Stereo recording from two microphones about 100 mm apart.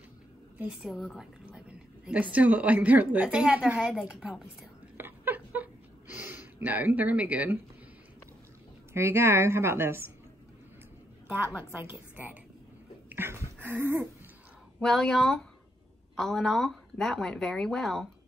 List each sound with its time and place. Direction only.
0.7 s a woman's voice: 5° right (ahead or behind)
4.9 s a sound: 20° right (ahead or behind)
8.9 s a woman's voice: 25° right (ahead or behind)
11.5 s a woman's voice: 20° right (ahead or behind)
13.1 s a sound: 20° right (ahead or behind)
14.8 s speech: 5° left (ahead or behind)